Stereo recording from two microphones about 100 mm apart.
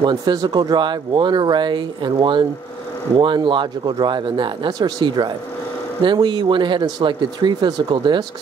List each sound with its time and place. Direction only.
0.0 s speech: 45° right (ahead or behind)